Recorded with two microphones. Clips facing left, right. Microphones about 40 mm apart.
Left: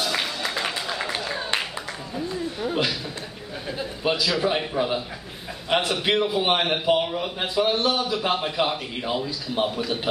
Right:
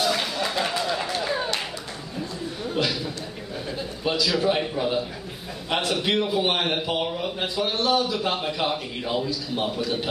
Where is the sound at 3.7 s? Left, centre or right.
Centre.